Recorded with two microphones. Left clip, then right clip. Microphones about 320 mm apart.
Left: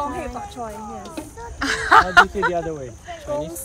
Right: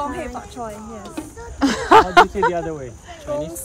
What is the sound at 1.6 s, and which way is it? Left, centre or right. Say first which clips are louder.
Speech: right 2 dB; right.